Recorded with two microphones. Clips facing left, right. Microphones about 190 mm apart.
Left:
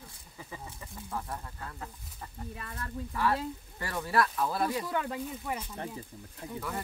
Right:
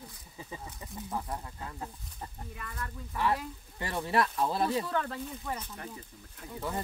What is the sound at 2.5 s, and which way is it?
Speech, 30° left (ahead or behind).